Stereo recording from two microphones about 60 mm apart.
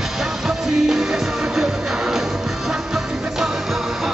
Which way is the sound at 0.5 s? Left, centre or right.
Centre.